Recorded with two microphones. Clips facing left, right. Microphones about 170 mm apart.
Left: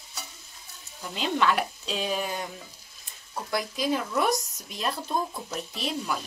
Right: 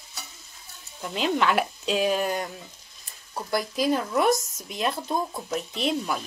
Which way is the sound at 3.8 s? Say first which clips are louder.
Right 4 dB; centre (ahead or behind).